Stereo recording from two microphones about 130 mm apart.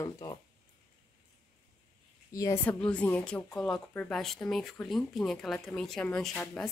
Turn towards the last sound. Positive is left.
turn(degrees=5)  # may be behind; listen again after turning